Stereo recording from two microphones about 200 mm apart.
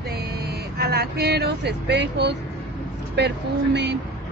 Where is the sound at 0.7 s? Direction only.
55° right (ahead or behind).